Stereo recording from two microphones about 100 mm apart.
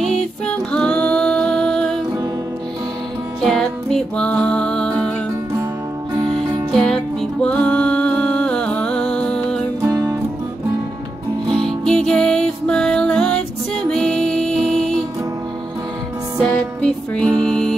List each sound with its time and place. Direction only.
0.0 s music: 10° left (ahead or behind)
3.3 s music: centre (ahead or behind)
6.7 s music: 5° left (ahead or behind)
9.8 s music: 30° right (ahead or behind)
11.4 s music: 5° left (ahead or behind)
16.3 s music: 5° left (ahead or behind)